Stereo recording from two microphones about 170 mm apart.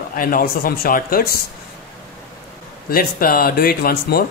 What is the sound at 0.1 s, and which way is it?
Speech, 55° left (ahead or behind).